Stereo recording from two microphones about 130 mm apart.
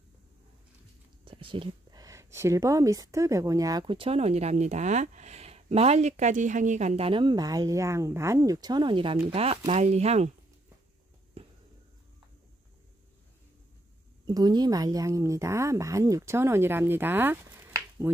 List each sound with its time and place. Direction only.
1.2 s speech: 40° right (ahead or behind)
3.8 s speech: 40° right (ahead or behind); by 7.1 s 65° right (ahead or behind)
7.1 s a woman's voice: 40° right (ahead or behind); by 10.3 s 55° right (ahead or behind)
11.4 s a sound: 50° right (ahead or behind)
14.2 s a woman's voice: 35° right (ahead or behind)